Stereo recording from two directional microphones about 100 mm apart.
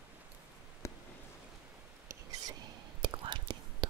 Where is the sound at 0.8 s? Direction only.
30° left (ahead or behind).